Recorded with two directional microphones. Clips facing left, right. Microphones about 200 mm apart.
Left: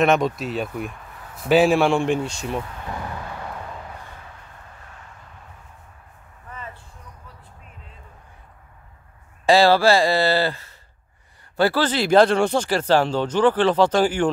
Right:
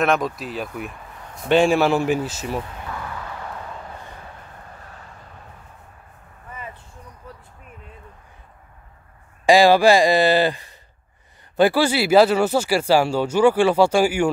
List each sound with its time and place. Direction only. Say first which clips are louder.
0.0 s a man's voice: left 2 dB; centre (ahead or behind)
9.5 s speech: right 2 dB; 15° right (ahead or behind)